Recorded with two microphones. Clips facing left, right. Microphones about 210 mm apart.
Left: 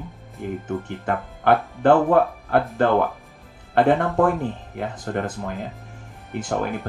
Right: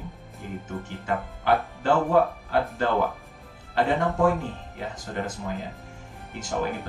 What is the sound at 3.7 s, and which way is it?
Speech, 60° left (ahead or behind).